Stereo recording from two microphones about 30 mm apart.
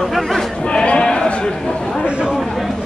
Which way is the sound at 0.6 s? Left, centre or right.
Left.